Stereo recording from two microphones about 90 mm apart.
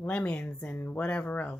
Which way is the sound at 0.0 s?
15° left (ahead or behind).